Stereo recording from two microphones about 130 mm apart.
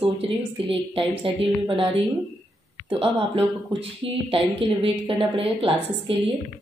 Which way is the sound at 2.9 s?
45° right (ahead or behind).